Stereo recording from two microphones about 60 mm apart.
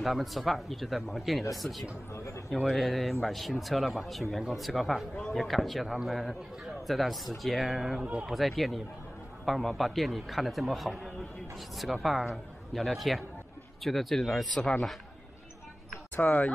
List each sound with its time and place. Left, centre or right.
0.0 s a man's voice: centre
2.1 s speech: left
2.5 s a man's voice: centre
16.2 s speech: left